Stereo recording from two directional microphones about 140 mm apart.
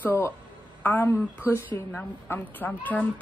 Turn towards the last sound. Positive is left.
turn(degrees=10)  # may be behind; listen again after turning